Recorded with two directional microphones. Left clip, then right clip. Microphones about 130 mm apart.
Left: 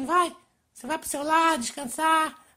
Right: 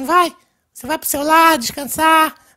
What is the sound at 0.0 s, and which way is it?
A woman's voice, 35° right (ahead or behind).